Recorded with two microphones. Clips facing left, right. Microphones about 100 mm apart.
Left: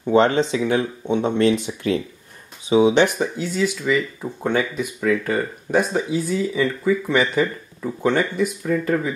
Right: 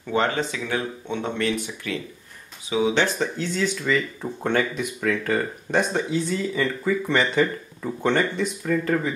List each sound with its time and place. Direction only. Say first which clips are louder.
0.0 s speech: left 7 dB; 25° left (ahead or behind)
1.7 s speech: left 9 dB; 30° left (ahead or behind)
2.7 s speech: left 6 dB; 20° left (ahead or behind)